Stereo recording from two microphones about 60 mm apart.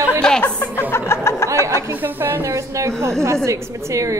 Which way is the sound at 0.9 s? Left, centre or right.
Left.